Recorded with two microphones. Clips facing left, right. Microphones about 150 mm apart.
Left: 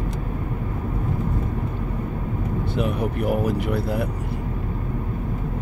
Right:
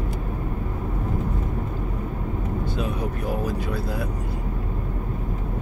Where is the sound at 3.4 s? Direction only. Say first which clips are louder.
Left 4 dB; 60° left (ahead or behind).